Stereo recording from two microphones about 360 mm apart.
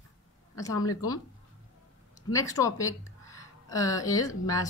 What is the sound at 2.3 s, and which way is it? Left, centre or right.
Speech, centre.